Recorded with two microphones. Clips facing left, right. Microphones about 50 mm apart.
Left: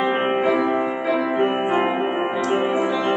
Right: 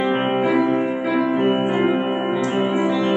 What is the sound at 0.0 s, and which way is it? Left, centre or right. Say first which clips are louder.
Music: even; centre.